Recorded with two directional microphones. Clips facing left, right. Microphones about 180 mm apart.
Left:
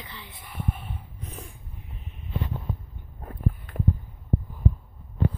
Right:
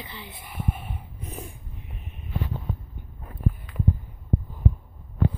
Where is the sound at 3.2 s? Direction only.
55° left (ahead or behind).